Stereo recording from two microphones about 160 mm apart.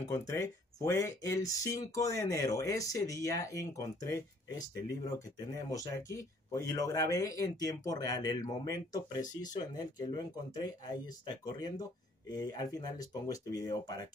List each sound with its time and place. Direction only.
0.0 s speech: 15° left (ahead or behind)
5.5 s speech: 20° left (ahead or behind)